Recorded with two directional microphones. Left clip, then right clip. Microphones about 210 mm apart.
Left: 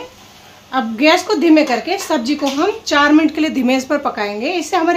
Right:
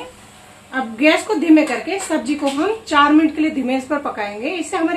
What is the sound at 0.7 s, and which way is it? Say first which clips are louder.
A woman's voice: left 3 dB; 45° left (ahead or behind).